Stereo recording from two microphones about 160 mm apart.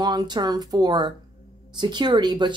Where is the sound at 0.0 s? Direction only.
25° right (ahead or behind).